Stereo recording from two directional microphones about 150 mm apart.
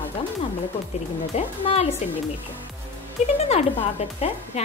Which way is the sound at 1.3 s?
45° left (ahead or behind).